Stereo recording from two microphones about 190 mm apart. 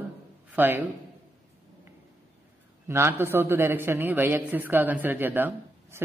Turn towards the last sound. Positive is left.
turn(degrees=-10)  # may be behind; listen again after turning